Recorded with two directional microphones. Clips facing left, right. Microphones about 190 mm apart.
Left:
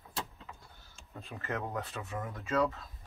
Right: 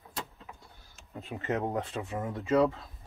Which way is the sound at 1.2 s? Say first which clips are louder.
Right 6 dB; 20° right (ahead or behind).